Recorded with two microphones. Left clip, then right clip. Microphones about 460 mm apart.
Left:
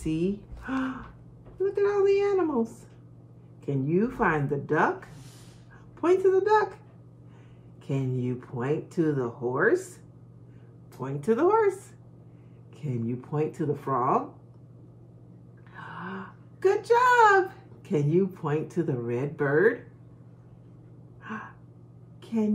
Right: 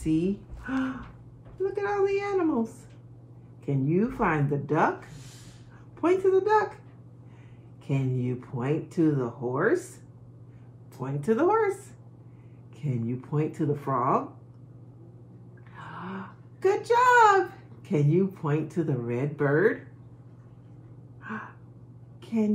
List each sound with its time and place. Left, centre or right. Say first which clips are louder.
0.7 s speech: even; centre
3.6 s speech: even; centre
5.9 s speech: left 1 dB; centre
7.9 s speech: even; centre
11.0 s speech: even; centre
12.8 s speech: even; centre
15.7 s a sound: left 1 dB; centre
17.8 s speech: even; centre
22.2 s a sound: right 1 dB; centre